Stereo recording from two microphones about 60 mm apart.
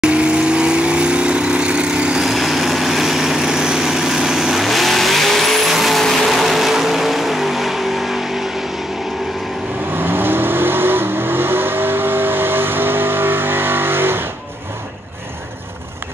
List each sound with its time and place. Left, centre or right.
0.0 s vehicle: centre
2.2 s vehicle: centre
9.9 s vehicle: right